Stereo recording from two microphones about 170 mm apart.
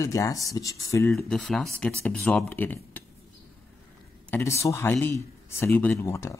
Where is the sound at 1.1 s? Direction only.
Centre (ahead or behind).